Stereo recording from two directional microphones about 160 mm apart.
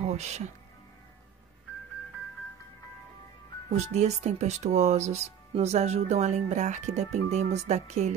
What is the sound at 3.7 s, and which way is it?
Speech, 45° right (ahead or behind).